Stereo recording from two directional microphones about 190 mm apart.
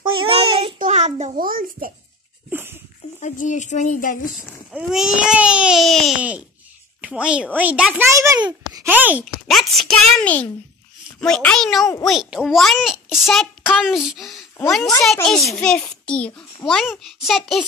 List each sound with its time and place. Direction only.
0.0 s child singing: 30° right (ahead or behind)
0.7 s a child's voice: 40° right (ahead or behind)
2.5 s a sound: 10° right (ahead or behind)
3.2 s speech: 40° left (ahead or behind)
4.6 s a child's voice: 5° right (ahead or behind)
8.1 s a child's voice: 15° right (ahead or behind); by 17.6 s centre (ahead or behind)